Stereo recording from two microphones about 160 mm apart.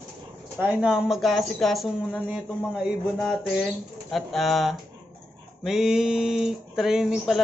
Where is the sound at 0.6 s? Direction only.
10° right (ahead or behind).